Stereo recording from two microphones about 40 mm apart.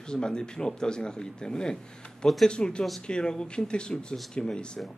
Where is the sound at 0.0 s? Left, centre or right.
Centre.